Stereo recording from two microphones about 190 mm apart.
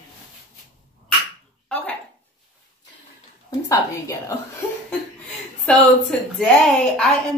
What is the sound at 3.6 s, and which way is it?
A woman's voice, 15° left (ahead or behind).